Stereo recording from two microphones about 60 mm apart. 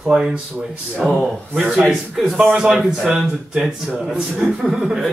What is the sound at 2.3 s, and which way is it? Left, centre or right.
Speech, centre.